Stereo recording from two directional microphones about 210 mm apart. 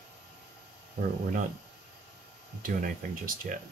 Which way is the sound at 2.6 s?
40° right (ahead or behind).